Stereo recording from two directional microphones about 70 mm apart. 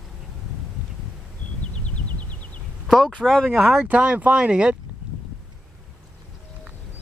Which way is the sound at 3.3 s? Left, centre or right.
Centre.